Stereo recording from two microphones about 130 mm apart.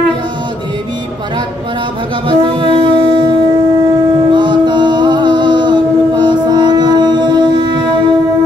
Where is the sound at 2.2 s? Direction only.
40° right (ahead or behind).